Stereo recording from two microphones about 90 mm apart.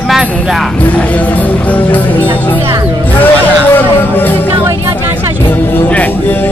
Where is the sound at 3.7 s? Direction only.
20° left (ahead or behind).